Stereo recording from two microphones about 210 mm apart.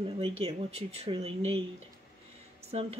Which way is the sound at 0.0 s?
30° right (ahead or behind).